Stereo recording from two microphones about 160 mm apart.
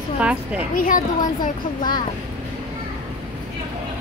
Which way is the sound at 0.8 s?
55° left (ahead or behind).